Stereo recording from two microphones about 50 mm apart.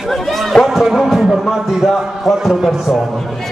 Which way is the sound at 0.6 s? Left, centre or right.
Centre.